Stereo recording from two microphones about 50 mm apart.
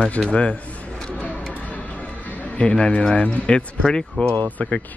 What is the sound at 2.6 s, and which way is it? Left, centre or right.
Speech, left.